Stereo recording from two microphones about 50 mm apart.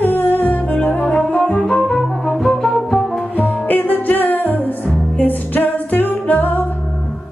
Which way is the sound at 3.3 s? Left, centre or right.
Left.